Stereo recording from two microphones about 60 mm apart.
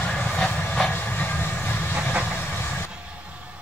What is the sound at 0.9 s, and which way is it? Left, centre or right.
Train, left.